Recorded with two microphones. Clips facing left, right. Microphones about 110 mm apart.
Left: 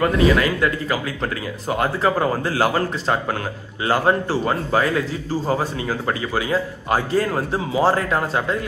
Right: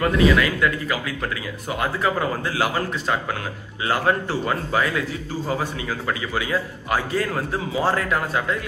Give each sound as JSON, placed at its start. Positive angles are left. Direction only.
{"t": 0.0, "sound": "speech", "side_deg": 30}